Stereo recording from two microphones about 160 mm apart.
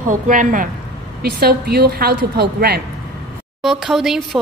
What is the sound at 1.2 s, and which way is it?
A woman's voice, 75° right (ahead or behind).